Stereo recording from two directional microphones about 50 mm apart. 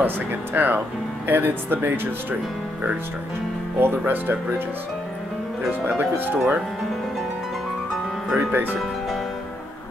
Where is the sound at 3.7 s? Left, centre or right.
Right.